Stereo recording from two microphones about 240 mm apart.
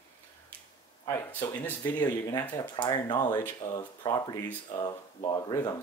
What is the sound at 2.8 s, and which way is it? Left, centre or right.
Speech, centre.